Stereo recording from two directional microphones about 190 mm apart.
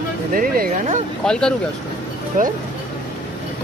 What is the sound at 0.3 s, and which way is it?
Speech, 45° right (ahead or behind).